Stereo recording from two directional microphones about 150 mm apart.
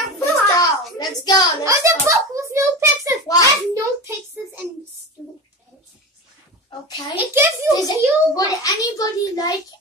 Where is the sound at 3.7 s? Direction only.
20° right (ahead or behind).